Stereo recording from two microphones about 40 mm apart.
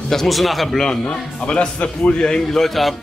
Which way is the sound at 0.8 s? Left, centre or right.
Centre.